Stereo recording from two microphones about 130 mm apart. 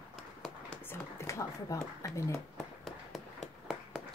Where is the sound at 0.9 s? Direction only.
20° left (ahead or behind).